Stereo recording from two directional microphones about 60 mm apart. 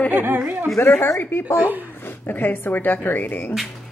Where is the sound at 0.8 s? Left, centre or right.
Left.